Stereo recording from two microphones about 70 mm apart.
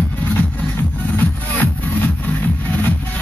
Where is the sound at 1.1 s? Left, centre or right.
Left.